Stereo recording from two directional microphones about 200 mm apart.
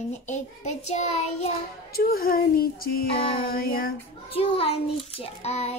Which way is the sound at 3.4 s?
45° left (ahead or behind).